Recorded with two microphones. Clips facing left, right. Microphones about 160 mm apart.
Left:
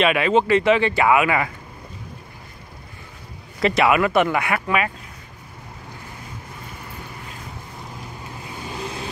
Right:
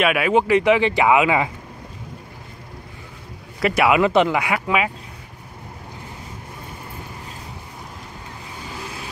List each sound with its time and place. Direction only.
0.0 s speech: 10° right (ahead or behind)
3.6 s speech: 10° right (ahead or behind)